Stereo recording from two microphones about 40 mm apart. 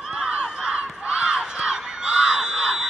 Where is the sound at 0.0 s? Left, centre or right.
Right.